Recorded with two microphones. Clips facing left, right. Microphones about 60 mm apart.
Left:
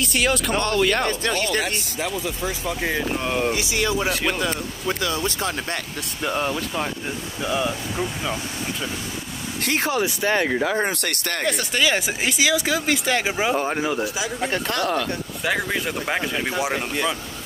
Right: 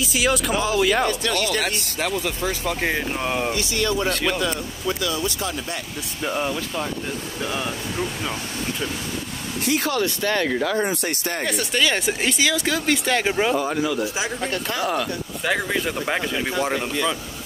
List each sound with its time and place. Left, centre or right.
0.0 s speech: centre
1.6 s speech: right
3.2 s speech: centre
3.5 s speech: centre
4.8 s speech: left
7.4 s speech: centre
9.8 s speech: centre
10.9 s speech: left
11.4 s speech: centre
13.6 s speech: left
14.8 s speech: centre